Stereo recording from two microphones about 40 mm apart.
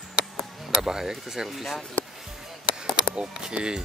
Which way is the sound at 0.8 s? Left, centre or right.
Centre.